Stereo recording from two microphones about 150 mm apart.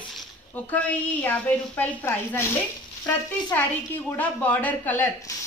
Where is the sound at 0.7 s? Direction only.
10° left (ahead or behind).